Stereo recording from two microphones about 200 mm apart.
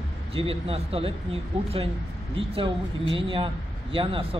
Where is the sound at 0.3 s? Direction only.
30° right (ahead or behind).